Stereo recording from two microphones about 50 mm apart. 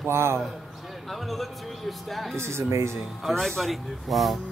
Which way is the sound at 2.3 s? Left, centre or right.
Right.